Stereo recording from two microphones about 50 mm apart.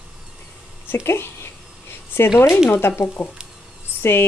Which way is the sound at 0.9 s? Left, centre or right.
Left.